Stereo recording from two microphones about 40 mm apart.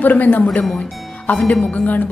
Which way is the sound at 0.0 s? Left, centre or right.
Left.